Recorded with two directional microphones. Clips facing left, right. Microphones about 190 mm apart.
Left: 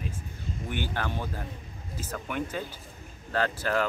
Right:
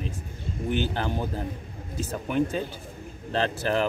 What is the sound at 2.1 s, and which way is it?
Speech, 25° right (ahead or behind).